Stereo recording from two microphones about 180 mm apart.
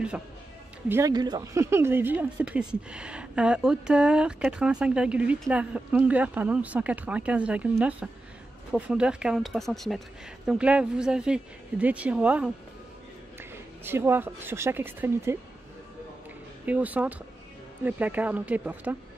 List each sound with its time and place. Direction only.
0.8 s a woman's voice: 15° right (ahead or behind)
16.6 s a woman's voice: 10° right (ahead or behind)